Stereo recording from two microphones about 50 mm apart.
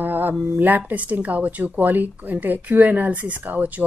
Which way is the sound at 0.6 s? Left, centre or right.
Right.